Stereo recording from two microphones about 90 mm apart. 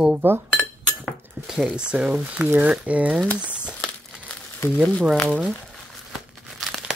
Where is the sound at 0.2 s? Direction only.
20° right (ahead or behind).